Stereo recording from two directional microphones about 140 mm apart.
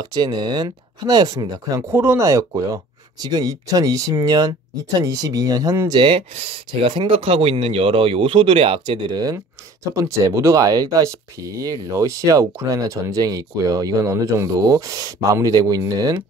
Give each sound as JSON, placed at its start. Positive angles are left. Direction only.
{"t": 0.0, "sound": "speech", "side_deg": -30}
{"t": 5.9, "sound": "speech", "side_deg": -40}